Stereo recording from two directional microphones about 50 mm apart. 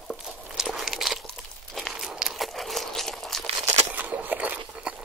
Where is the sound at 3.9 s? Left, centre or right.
Right.